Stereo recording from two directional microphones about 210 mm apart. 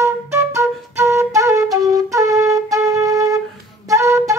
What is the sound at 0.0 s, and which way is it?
Flute, 10° right (ahead or behind).